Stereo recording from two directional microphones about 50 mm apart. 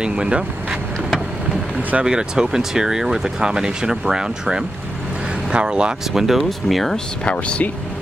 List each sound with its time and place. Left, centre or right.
0.0 s speech: centre
1.8 s speech: right
2.0 s speech: centre
6.2 s speech: centre
7.2 s speech: left